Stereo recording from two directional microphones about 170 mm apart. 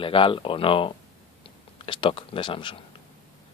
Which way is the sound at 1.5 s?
30° left (ahead or behind).